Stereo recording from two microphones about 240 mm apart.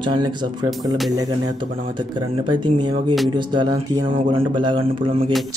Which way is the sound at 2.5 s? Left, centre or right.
Centre.